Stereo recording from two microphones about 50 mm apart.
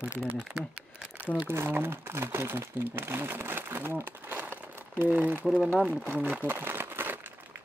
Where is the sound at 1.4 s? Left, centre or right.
Right.